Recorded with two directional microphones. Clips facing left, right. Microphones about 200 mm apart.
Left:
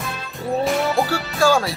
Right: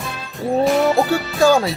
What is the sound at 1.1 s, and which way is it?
Speech, 20° right (ahead or behind).